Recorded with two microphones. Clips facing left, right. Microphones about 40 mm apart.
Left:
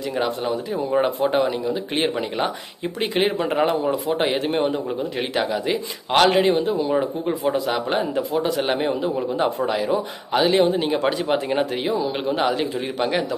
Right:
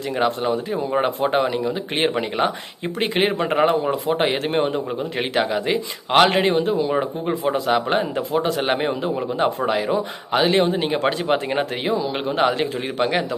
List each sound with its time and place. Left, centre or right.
0.4 s a man's voice: right